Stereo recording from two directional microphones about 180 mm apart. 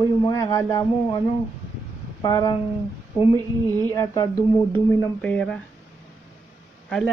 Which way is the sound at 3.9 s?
15° left (ahead or behind).